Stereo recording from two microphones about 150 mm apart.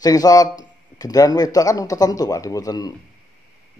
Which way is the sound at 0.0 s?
25° left (ahead or behind).